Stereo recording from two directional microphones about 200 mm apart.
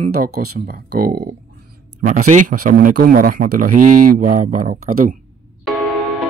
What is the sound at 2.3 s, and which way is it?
Speech, 45° right (ahead or behind).